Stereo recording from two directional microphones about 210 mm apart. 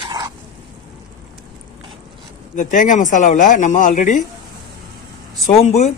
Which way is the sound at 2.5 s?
35° left (ahead or behind).